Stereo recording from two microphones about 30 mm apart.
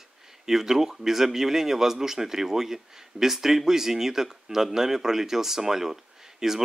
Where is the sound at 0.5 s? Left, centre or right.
Centre.